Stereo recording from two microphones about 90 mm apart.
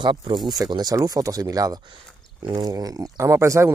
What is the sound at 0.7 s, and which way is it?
Speech, 45° right (ahead or behind).